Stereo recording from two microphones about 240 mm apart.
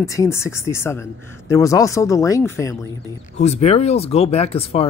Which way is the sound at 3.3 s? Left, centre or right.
Left.